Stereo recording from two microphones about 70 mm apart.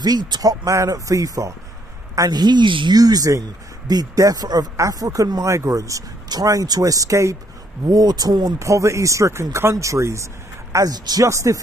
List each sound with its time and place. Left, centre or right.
0.0 s speech: right
0.7 s speech: right
2.1 s speech: right
3.8 s speech: right
6.2 s speech: right
7.9 s speech: right
8.5 s speech: right
10.7 s speech: right
11.2 s speech: right